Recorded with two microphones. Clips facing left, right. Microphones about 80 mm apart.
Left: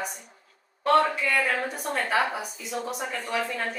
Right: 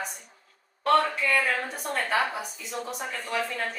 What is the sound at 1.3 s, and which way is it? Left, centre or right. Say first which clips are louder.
A woman's voice: even; centre.